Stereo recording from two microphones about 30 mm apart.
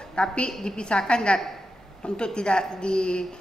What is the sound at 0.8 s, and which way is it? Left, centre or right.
A woman's voice, left.